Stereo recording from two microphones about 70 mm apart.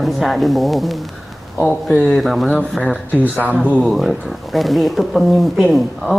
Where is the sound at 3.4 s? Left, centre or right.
Left.